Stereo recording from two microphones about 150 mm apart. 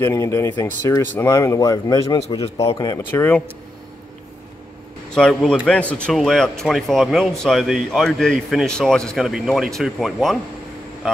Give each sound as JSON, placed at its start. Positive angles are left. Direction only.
{"t": 0.0, "sound": "speech", "side_deg": 20}
{"t": 3.0, "sound": "speech", "side_deg": 15}
{"t": 5.1, "sound": "speech", "side_deg": 5}